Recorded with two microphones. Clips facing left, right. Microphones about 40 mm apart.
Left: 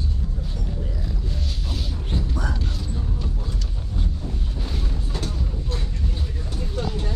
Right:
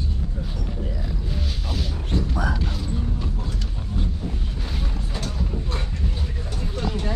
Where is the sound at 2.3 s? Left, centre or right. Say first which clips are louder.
Right 3 dB; centre.